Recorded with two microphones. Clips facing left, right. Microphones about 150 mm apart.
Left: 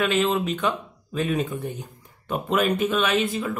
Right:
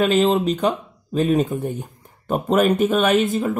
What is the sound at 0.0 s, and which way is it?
Speech, 40° right (ahead or behind).